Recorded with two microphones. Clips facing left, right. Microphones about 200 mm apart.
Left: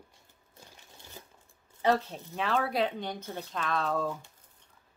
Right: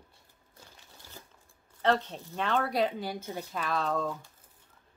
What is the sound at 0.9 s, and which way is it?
Crumpling, 20° left (ahead or behind).